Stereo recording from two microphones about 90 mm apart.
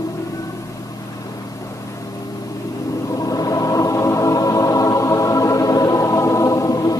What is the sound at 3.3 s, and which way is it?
Music, 40° left (ahead or behind).